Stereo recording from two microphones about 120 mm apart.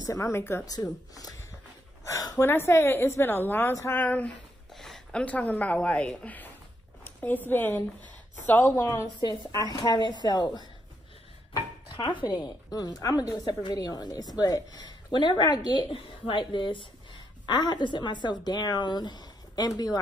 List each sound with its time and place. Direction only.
0.0 s a woman's voice: 25° left (ahead or behind)
0.7 s a woman's voice: 30° left (ahead or behind); by 4.3 s 15° left (ahead or behind)
4.7 s a woman's voice: 5° left (ahead or behind); by 10.6 s 35° left (ahead or behind)
11.9 s a woman's voice: 40° left (ahead or behind)